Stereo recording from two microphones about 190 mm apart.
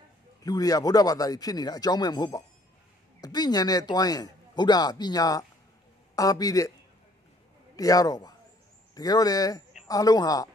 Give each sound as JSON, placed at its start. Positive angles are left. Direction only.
{"t": 0.4, "sound": "speech", "side_deg": 20}
{"t": 7.7, "sound": "a man's voice", "side_deg": 20}